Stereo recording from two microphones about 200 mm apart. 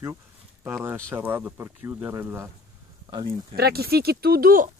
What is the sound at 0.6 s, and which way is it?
Speech, 10° right (ahead or behind).